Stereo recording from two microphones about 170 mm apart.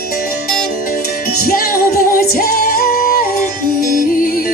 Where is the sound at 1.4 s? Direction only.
60° left (ahead or behind).